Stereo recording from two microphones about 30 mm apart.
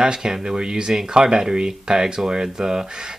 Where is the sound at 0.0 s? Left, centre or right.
Right.